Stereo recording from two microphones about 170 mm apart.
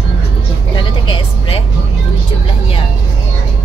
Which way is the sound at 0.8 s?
30° left (ahead or behind).